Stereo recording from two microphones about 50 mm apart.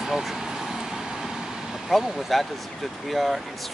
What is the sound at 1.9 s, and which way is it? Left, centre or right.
Speech, centre.